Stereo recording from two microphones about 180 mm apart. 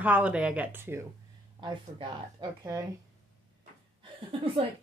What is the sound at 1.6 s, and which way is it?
A woman's voice, 25° right (ahead or behind).